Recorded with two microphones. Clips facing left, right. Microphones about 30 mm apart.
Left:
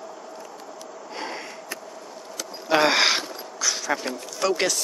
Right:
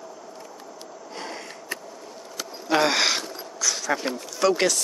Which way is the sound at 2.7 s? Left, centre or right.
Centre.